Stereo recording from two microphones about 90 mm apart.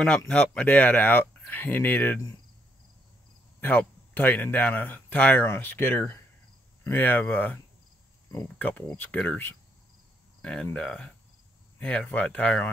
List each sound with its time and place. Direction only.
0.0 s speech: 10° left (ahead or behind)
3.6 s speech: 20° left (ahead or behind)